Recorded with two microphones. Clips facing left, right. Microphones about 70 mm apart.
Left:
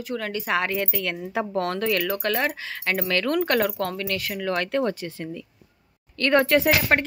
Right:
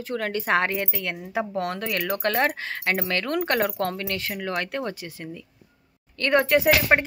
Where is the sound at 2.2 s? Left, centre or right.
Right.